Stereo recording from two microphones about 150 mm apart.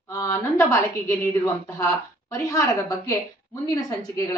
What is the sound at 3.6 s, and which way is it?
Speech, 25° left (ahead or behind).